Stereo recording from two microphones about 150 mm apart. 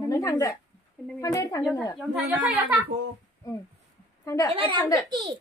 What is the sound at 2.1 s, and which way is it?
Speech, 5° right (ahead or behind).